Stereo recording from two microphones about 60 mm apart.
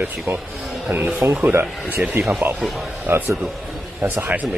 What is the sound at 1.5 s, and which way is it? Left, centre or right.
Speech, right.